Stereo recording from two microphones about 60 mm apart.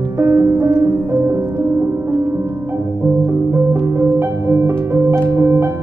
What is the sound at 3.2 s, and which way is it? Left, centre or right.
Music, right.